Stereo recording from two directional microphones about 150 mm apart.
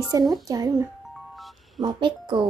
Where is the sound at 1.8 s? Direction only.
30° right (ahead or behind).